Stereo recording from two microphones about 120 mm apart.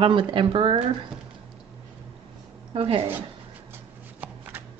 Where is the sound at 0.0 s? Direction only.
45° right (ahead or behind).